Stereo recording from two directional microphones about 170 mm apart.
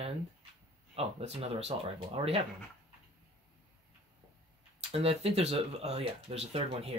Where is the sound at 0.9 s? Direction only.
35° right (ahead or behind).